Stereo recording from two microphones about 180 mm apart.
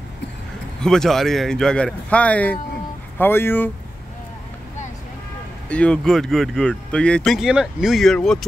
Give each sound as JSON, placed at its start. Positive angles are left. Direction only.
{"t": 0.8, "sound": "speech", "side_deg": 5}
{"t": 5.7, "sound": "speech", "side_deg": 5}